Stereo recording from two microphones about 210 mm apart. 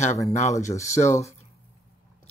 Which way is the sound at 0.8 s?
15° left (ahead or behind).